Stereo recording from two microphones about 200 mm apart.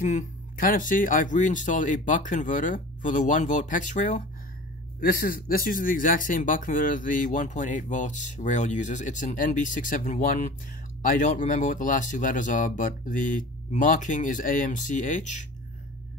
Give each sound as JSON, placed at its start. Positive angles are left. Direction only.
{"t": 0.0, "sound": "speech", "side_deg": 40}